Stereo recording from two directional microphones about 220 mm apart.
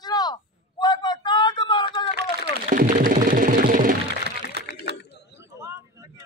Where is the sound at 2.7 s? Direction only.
40° right (ahead or behind).